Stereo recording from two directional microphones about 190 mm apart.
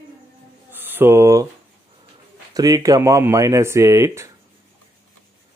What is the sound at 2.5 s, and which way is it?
Speech, 20° right (ahead or behind).